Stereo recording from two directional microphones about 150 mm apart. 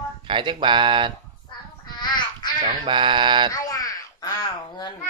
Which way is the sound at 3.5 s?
25° left (ahead or behind).